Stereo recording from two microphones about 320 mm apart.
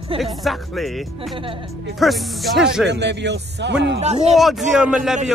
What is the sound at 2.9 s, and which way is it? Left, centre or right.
Speech, right.